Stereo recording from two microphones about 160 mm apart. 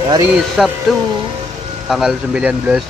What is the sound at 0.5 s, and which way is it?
Speech, centre (ahead or behind).